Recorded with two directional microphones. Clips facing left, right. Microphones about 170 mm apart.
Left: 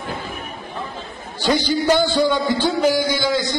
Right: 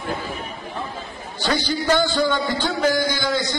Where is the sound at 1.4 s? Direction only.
15° left (ahead or behind).